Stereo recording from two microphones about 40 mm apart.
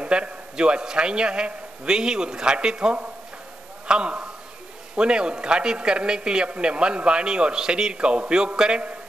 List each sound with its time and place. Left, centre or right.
0.0 s a man's voice: right